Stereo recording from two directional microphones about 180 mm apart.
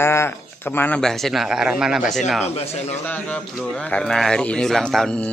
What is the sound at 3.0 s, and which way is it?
A man's voice, 10° left (ahead or behind).